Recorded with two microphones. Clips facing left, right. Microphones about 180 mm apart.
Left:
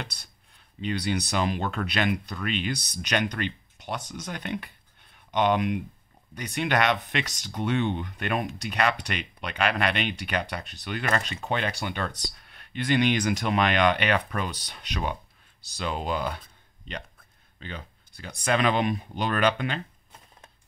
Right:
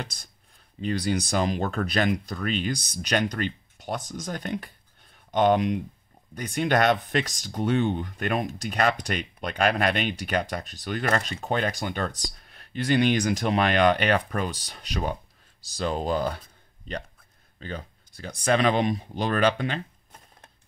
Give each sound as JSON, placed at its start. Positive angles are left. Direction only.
{"t": 0.0, "sound": "speech", "side_deg": -45}
{"t": 17.6, "sound": "speech", "side_deg": -45}